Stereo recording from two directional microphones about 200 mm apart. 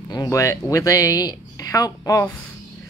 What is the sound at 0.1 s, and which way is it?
Speech, 15° left (ahead or behind).